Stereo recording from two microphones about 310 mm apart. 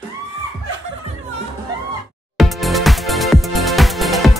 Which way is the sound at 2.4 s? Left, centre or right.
Centre.